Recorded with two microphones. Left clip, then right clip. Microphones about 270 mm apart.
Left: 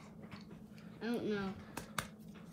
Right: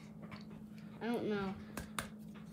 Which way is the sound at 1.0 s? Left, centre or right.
Right.